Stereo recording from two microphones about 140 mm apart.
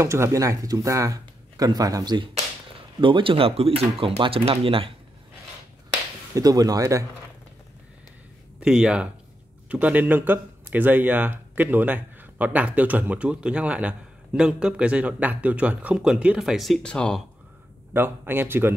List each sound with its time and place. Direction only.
0.0 s speech: 20° right (ahead or behind); by 4.9 s 40° right (ahead or behind)
6.3 s speech: 25° right (ahead or behind)
8.5 s speech: 5° right (ahead or behind)
17.9 s speech: 15° right (ahead or behind)